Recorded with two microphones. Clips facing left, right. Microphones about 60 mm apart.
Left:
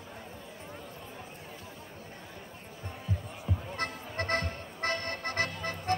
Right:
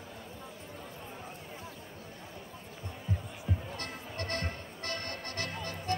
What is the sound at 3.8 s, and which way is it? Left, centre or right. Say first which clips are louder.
Music: left 5 dB; left.